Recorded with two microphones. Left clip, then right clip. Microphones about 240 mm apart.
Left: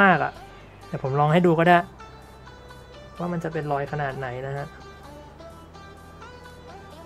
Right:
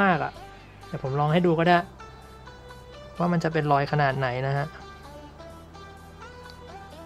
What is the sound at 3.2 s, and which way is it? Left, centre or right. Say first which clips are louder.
Speech: right 4 dB; centre.